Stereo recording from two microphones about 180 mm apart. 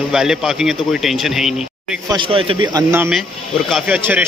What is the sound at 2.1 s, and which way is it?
Speech, 30° right (ahead or behind).